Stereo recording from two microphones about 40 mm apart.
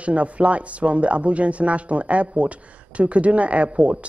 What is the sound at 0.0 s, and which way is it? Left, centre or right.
Speech, right.